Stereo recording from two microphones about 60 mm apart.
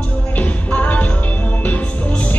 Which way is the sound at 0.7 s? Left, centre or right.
Left.